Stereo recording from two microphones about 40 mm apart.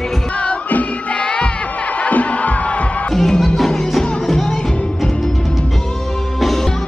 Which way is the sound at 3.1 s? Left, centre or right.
Centre.